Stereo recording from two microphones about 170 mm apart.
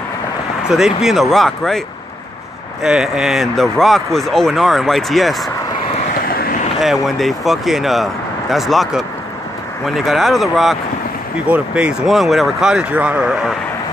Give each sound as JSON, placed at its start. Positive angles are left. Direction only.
{"t": 0.7, "sound": "speech", "side_deg": -5}
{"t": 2.8, "sound": "speech", "side_deg": -5}
{"t": 6.2, "sound": "vehicle", "side_deg": 60}
{"t": 6.8, "sound": "speech", "side_deg": 0}